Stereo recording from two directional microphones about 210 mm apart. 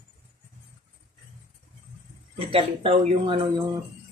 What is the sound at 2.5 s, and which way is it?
Speech, 25° right (ahead or behind).